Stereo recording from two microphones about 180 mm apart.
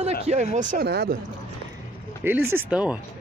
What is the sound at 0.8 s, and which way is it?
Speech, 65° right (ahead or behind).